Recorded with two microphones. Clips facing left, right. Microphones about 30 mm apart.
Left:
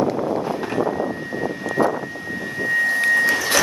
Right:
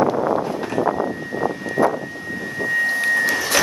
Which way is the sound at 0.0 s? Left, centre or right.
Right.